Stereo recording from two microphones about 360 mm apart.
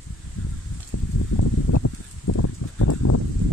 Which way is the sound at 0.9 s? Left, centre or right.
Left.